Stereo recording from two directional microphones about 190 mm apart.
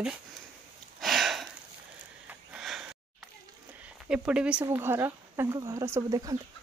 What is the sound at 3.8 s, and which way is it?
Speech, 5° right (ahead or behind).